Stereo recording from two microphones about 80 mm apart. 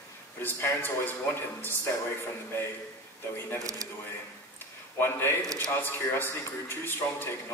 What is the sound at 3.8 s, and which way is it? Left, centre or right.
Speech, right.